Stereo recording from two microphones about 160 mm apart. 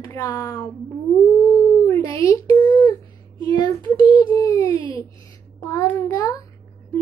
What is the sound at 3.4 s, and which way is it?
A child's voice, 20° left (ahead or behind).